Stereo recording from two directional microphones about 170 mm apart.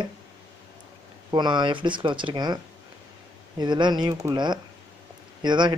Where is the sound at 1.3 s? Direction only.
25° right (ahead or behind).